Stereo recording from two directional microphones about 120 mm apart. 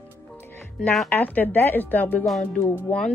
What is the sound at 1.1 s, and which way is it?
Speech, 15° left (ahead or behind).